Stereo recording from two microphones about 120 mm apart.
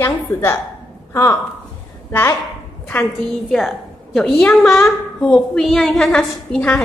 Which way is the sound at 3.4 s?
Centre (ahead or behind).